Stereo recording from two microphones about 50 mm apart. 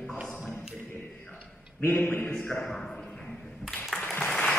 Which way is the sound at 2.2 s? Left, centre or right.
Centre.